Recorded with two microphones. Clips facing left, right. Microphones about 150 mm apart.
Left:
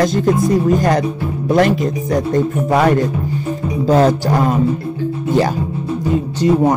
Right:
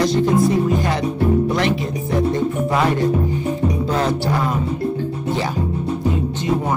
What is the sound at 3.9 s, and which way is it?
Music, 45° left (ahead or behind).